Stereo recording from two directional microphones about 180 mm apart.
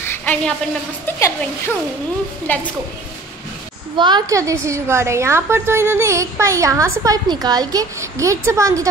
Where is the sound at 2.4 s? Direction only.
10° left (ahead or behind).